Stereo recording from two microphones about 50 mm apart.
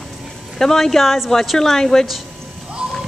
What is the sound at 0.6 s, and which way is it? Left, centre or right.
A woman's voice, centre.